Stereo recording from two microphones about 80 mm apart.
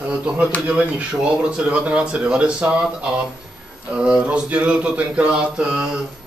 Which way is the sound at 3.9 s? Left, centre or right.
Centre.